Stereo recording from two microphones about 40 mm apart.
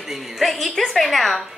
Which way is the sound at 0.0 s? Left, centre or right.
Centre.